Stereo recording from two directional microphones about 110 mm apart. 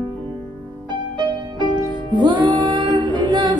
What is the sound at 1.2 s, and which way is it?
Music, 45° right (ahead or behind).